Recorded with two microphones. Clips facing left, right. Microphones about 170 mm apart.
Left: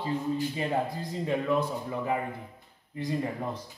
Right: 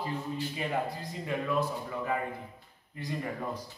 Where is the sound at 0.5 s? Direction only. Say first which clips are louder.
Left 3 dB; 30° left (ahead or behind).